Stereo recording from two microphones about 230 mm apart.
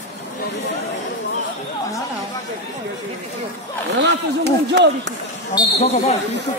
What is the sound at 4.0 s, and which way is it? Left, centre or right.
Speech, right.